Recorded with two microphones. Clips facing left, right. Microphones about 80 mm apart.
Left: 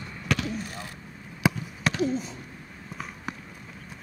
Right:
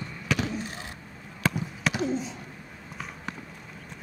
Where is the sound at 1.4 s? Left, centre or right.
Centre.